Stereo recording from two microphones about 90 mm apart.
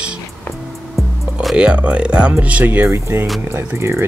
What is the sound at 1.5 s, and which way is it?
Speech, 15° right (ahead or behind).